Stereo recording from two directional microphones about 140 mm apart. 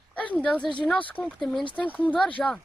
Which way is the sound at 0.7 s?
10° left (ahead or behind).